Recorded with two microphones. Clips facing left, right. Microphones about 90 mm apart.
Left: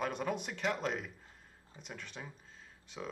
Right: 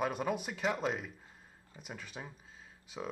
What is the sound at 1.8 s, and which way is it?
Speech, 5° right (ahead or behind).